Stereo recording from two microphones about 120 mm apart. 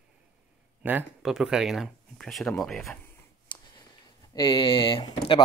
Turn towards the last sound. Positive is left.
turn(degrees=45)  # may be behind; listen again after turning